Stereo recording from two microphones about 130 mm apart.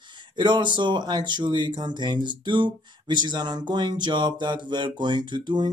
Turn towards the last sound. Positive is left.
turn(degrees=-35)  # may be behind; listen again after turning